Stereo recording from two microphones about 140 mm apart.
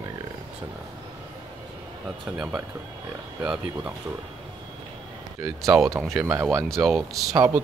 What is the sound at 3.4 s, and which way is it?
Speech, 5° right (ahead or behind).